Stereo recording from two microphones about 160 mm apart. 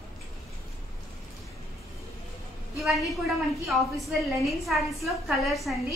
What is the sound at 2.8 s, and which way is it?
A woman's voice, centre (ahead or behind).